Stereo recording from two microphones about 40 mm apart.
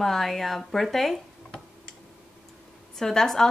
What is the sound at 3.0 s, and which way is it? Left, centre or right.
Speech, centre.